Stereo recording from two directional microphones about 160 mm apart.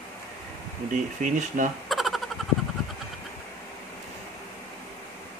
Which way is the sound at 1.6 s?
55° right (ahead or behind).